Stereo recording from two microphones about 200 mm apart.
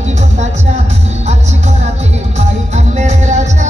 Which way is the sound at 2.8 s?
35° right (ahead or behind).